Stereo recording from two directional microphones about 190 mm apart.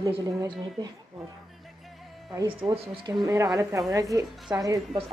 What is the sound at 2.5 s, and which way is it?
A woman's voice, 25° right (ahead or behind).